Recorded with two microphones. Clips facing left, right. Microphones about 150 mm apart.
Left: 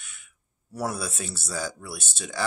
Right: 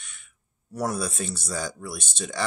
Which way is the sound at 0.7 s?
5° left (ahead or behind).